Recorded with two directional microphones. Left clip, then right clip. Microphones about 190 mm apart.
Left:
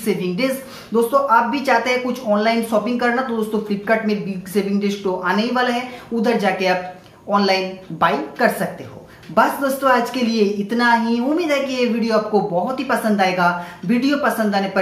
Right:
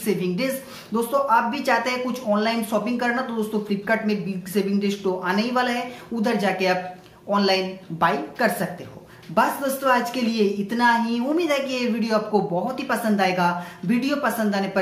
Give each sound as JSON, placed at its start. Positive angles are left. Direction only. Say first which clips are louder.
{"t": 0.0, "sound": "a woman's voice", "louder": "left 4 dB", "side_deg": -5}